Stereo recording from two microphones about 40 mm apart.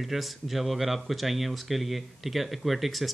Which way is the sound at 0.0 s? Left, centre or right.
Centre.